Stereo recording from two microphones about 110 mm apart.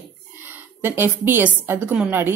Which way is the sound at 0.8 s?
20° right (ahead or behind).